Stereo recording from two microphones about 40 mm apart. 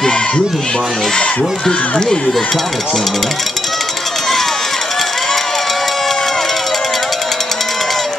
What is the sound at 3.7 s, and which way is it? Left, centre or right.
Run, centre.